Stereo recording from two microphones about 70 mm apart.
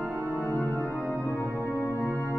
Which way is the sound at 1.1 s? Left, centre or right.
Left.